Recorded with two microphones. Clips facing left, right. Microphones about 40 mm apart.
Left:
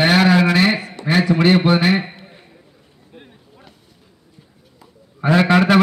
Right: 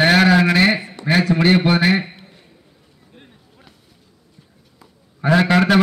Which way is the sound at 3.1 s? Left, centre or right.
Centre.